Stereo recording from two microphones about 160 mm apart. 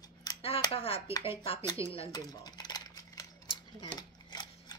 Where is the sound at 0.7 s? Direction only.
35° left (ahead or behind).